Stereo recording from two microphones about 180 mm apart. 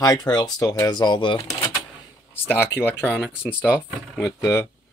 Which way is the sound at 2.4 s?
10° left (ahead or behind).